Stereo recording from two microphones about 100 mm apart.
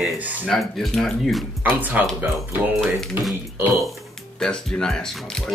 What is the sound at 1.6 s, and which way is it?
Speech, 15° right (ahead or behind).